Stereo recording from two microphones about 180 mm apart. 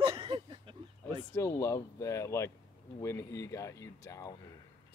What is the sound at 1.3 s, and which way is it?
Speech, 15° left (ahead or behind).